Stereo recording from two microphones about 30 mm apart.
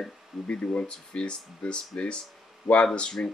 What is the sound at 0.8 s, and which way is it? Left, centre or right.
Speech, left.